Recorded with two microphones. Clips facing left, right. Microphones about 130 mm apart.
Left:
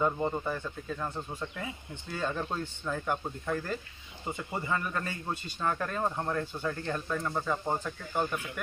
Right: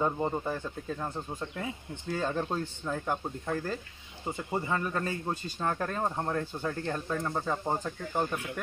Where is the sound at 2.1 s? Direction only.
35° right (ahead or behind).